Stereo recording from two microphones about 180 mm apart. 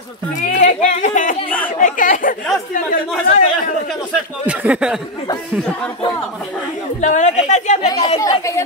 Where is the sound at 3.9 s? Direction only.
5° right (ahead or behind).